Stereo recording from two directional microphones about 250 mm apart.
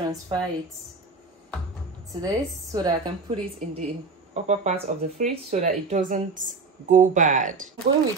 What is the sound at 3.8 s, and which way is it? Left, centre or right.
Speech, right.